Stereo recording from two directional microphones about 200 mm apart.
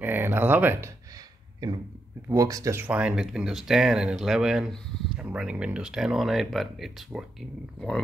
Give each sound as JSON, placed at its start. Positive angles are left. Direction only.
{"t": 0.0, "sound": "speech", "side_deg": -10}